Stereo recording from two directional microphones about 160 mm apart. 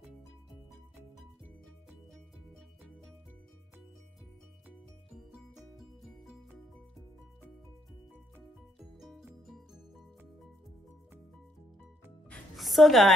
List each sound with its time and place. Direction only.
4.6 s music: 5° right (ahead or behind)
8.7 s music: centre (ahead or behind)
12.3 s music: centre (ahead or behind)